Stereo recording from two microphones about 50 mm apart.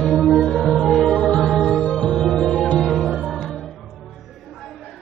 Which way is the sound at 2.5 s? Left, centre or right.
Left.